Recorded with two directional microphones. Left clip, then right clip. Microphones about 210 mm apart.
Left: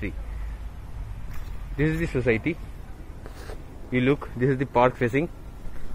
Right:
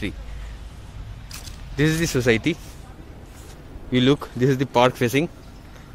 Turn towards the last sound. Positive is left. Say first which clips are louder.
# right 3 dB
turn(degrees=-20)  # may be behind; listen again after turning